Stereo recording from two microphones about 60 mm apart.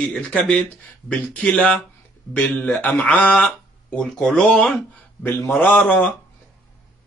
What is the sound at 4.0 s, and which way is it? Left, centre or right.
Speech, centre.